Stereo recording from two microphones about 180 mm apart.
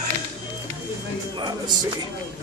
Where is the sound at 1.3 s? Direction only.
25° right (ahead or behind).